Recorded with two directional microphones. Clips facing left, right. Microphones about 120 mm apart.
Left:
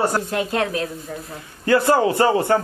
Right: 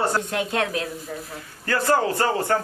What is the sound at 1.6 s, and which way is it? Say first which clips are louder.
Speech: left 5 dB; 20° left (ahead or behind).